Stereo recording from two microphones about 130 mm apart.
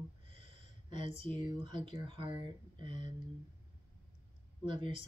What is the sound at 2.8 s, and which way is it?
Speech, 40° right (ahead or behind).